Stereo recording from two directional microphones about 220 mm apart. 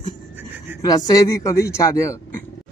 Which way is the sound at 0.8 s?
15° left (ahead or behind).